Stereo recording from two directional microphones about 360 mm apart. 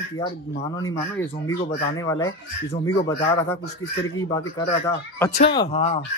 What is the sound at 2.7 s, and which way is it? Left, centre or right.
Speech, centre.